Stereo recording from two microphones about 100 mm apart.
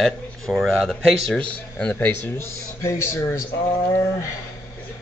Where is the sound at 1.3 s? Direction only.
10° left (ahead or behind); by 3.4 s 30° left (ahead or behind).